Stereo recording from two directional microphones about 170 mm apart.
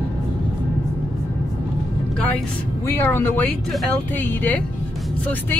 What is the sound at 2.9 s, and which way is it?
Speech, 10° left (ahead or behind).